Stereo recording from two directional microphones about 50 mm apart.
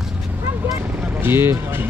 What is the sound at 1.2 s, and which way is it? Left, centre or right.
Speech, right.